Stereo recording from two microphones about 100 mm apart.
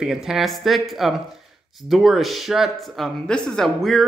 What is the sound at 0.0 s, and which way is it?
Speech, 5° right (ahead or behind).